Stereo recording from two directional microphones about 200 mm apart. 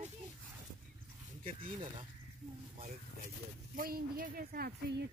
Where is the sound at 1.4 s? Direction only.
40° right (ahead or behind).